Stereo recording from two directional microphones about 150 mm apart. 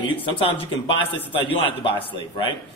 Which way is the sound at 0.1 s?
35° left (ahead or behind).